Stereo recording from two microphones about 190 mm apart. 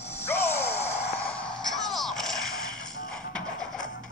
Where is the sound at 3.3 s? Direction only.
5° left (ahead or behind).